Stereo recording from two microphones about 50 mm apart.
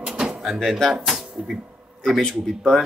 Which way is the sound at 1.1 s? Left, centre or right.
Centre.